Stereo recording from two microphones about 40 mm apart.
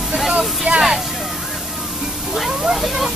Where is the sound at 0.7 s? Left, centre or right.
Right.